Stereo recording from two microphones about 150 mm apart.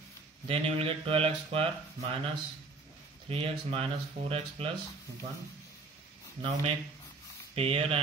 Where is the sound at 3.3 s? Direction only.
40° right (ahead or behind).